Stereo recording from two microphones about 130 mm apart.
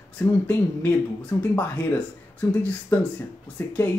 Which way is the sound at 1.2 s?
10° left (ahead or behind).